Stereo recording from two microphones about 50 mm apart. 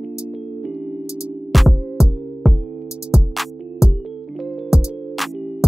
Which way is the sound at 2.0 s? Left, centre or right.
Centre.